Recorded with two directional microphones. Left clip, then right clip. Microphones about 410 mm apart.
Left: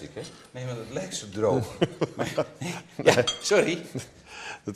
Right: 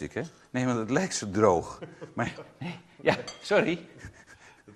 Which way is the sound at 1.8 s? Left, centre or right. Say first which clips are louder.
Left 17 dB; left.